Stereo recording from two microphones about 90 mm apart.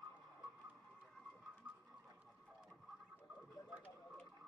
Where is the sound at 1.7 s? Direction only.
20° right (ahead or behind).